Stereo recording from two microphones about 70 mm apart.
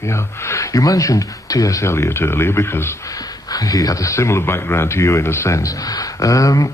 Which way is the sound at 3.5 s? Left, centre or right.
Left.